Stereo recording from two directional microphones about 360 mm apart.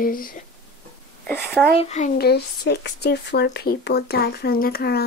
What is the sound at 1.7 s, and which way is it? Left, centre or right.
Speech, centre.